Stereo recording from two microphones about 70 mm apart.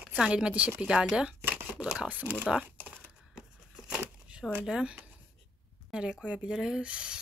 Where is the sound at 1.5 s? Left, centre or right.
Centre.